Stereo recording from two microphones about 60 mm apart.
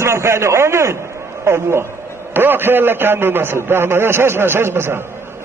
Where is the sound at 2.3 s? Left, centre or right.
Right.